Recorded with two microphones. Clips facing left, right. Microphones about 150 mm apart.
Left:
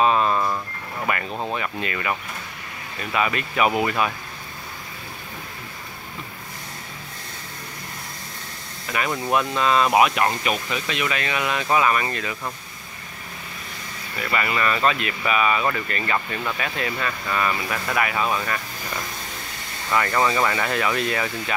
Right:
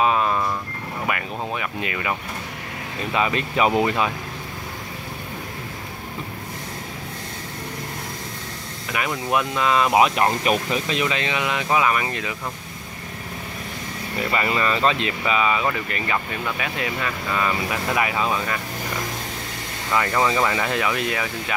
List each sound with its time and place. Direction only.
0.0 s vehicle: 10° right (ahead or behind)
1.1 s speech: 10° right (ahead or behind)
8.9 s speech: 10° right (ahead or behind)
10.0 s speech: 30° right (ahead or behind)
14.2 s speech: 25° right (ahead or behind)
19.9 s speech: 10° right (ahead or behind)